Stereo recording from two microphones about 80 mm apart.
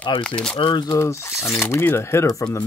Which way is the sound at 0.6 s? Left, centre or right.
Left.